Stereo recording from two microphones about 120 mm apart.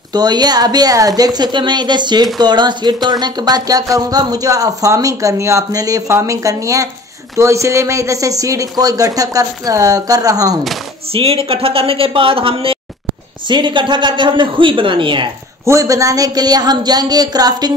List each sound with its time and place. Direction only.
0.1 s speech: 35° right (ahead or behind)
11.1 s speech: 50° right (ahead or behind)
15.6 s speech: 25° right (ahead or behind)